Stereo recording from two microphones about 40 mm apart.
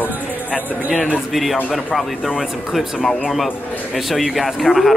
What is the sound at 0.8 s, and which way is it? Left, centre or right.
Speech, right.